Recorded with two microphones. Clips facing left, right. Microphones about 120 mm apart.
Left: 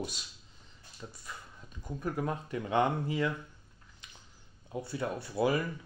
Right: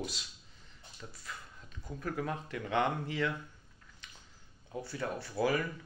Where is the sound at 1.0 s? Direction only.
15° left (ahead or behind).